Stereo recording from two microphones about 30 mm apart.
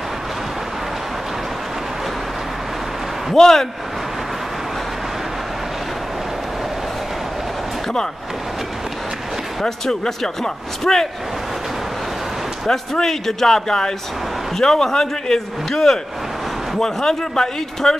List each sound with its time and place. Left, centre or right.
3.3 s a man's voice: centre
9.6 s a man's voice: centre
12.6 s a man's voice: centre